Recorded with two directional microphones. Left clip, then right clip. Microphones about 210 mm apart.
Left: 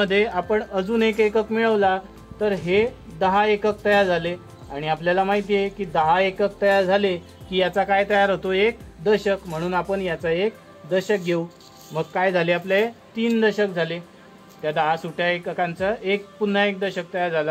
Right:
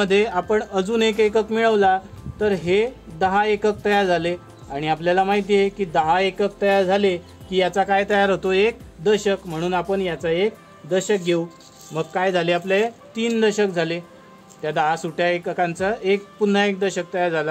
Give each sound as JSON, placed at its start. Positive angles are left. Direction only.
{"t": 0.0, "sound": "a woman's voice", "side_deg": -30}